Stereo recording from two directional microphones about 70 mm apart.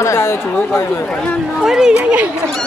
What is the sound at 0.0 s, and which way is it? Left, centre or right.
Speech, left.